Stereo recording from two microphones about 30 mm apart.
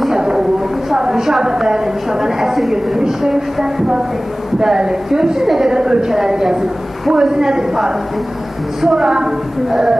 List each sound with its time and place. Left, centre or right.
0.1 s a sound: right
1.4 s a woman's voice: right
4.7 s a woman's voice: centre